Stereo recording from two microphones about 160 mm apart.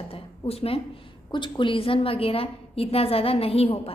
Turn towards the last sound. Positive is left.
turn(degrees=35)  # may be behind; listen again after turning